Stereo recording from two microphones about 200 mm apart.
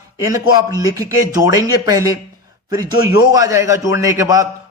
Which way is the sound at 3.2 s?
20° right (ahead or behind).